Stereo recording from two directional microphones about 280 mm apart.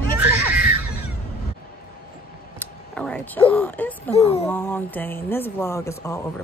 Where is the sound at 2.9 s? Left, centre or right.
Centre.